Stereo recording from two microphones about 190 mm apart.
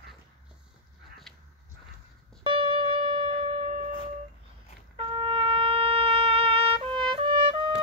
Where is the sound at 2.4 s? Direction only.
25° right (ahead or behind).